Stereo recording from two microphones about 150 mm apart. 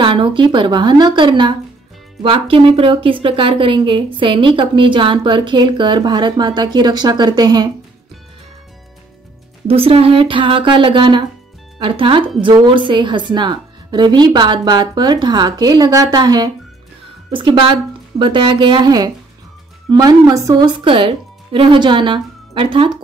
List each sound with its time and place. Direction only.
0.0 s speech: 35° right (ahead or behind)
9.7 s speech: 40° right (ahead or behind)